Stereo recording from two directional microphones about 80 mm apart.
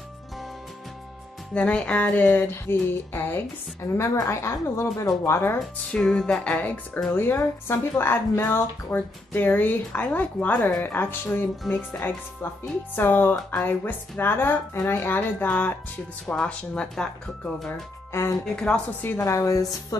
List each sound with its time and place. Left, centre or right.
1.5 s speech: centre
3.9 s a woman's voice: left
5.6 s speech: centre; by 11.4 s left
11.6 s speech: centre
12.9 s speech: left; by 17.1 s centre
18.4 s speech: centre
19.0 s a woman's voice: left